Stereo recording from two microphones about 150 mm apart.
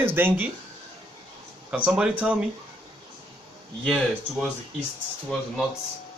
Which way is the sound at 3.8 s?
Centre (ahead or behind).